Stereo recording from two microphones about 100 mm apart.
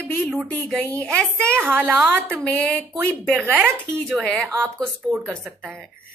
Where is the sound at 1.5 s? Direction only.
20° right (ahead or behind).